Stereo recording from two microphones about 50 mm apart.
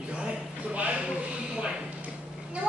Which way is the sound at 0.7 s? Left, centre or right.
Right.